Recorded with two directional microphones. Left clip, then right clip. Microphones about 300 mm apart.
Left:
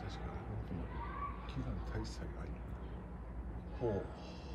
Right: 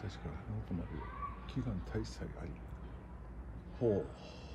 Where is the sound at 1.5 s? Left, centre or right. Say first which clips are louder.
Right 3 dB; right.